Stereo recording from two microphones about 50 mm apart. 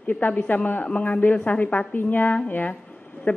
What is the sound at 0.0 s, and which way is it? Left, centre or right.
A woman's voice, left.